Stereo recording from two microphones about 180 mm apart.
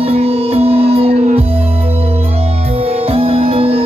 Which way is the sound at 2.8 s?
35° right (ahead or behind).